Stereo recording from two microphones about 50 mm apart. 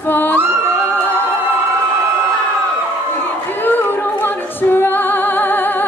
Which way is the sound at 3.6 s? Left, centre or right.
Left.